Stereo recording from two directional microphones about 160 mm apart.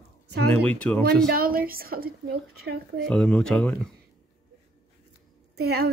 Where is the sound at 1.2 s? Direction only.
70° right (ahead or behind).